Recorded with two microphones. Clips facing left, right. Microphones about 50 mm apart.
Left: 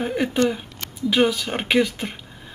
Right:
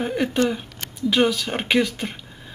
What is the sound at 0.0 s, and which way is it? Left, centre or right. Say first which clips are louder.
Speech: left 1 dB; centre.